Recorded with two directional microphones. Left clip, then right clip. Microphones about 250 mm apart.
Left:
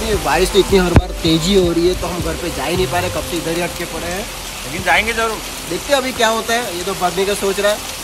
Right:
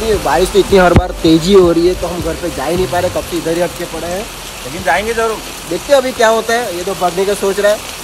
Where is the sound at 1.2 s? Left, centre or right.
Centre.